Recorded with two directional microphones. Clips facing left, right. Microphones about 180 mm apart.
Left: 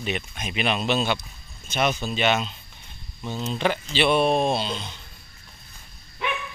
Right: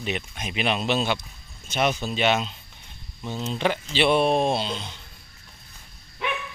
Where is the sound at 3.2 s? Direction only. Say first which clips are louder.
Left 1 dB; 15° right (ahead or behind).